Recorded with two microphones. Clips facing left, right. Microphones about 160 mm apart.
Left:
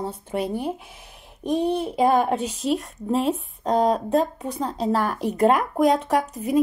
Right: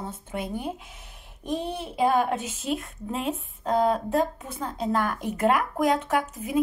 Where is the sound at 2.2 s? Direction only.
35° left (ahead or behind).